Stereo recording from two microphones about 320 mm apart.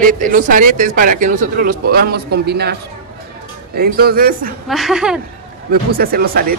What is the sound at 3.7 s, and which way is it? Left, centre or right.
Speech, right.